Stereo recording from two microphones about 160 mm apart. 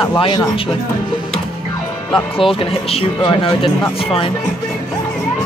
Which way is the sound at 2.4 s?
35° left (ahead or behind).